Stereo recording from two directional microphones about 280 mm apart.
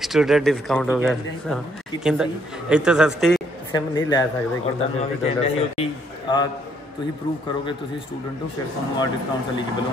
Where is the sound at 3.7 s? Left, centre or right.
Centre.